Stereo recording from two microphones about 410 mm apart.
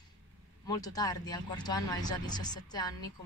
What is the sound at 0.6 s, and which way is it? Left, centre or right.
Speech, centre.